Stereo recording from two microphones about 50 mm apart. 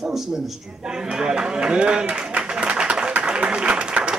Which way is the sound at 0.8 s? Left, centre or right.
Centre.